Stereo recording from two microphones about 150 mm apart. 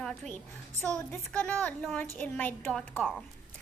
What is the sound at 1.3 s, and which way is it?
A woman's voice, 10° left (ahead or behind).